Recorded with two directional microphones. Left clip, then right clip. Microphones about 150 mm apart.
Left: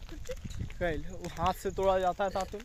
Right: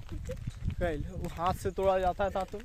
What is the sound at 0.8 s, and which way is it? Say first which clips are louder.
Speech: even; 5° right (ahead or behind).